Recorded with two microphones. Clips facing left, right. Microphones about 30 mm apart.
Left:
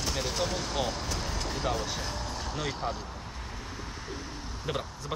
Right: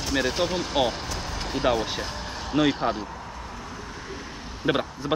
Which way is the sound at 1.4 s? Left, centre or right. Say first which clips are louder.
Right 10 dB; right.